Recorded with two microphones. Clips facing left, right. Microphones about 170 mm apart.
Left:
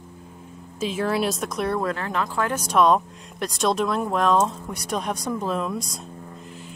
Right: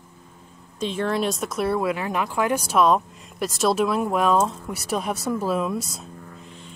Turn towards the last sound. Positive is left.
turn(degrees=-5)  # may be behind; listen again after turning